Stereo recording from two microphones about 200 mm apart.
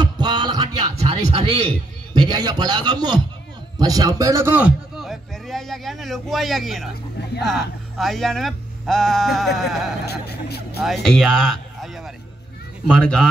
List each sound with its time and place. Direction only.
0.0 s music: 20° right (ahead or behind)
0.9 s a man's voice: 25° right (ahead or behind); by 9.5 s centre (ahead or behind)
10.0 s speech: 55° left (ahead or behind)
10.8 s speech: centre (ahead or behind)